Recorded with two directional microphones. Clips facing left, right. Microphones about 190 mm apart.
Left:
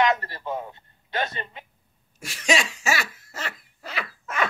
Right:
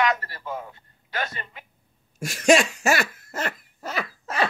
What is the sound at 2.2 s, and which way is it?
Cough, 45° right (ahead or behind).